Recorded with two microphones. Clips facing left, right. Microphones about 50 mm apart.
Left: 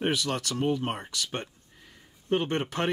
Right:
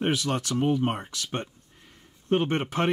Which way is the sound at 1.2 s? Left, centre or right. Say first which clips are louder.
Right 1 dB; right.